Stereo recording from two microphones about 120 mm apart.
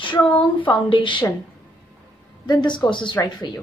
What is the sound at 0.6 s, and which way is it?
Speech, 45° left (ahead or behind).